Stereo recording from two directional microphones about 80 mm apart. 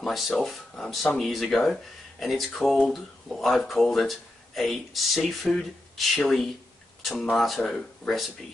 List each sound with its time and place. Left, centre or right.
0.0 s speech: centre